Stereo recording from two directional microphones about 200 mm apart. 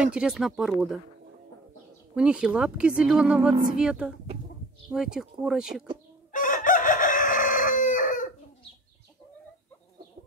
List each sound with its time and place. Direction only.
0.0 s speech: 5° right (ahead or behind)
2.1 s speech: 5° right (ahead or behind)
6.3 s chicken: 40° left (ahead or behind)